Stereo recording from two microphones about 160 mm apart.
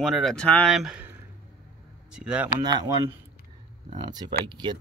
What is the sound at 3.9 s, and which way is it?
Speech, 25° right (ahead or behind).